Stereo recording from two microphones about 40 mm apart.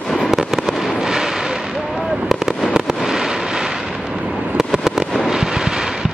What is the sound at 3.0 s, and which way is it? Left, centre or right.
Fireworks, centre.